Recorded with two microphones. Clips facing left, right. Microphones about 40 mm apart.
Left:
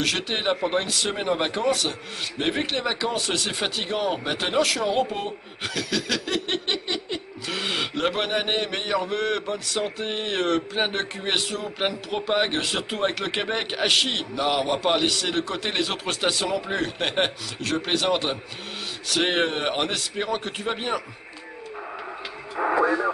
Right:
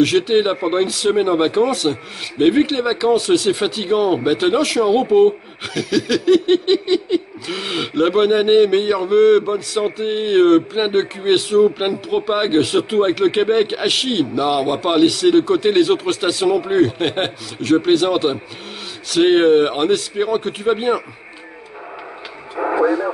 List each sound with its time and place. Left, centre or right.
0.0 s laughter: centre
22.6 s radio: centre